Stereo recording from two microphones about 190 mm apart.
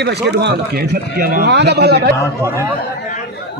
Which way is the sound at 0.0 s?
60° right (ahead or behind).